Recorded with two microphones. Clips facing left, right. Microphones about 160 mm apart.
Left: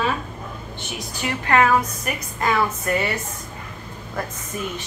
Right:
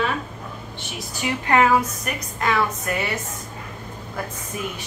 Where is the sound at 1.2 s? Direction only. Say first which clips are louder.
Even; 15° right (ahead or behind).